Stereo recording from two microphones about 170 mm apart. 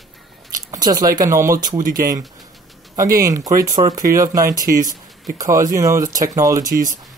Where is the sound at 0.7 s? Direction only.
25° right (ahead or behind).